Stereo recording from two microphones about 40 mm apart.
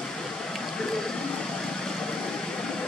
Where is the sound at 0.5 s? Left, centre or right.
Centre.